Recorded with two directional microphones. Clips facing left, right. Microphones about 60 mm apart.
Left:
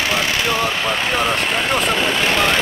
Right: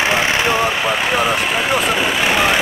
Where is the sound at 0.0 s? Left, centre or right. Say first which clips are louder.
Right 3 dB; right.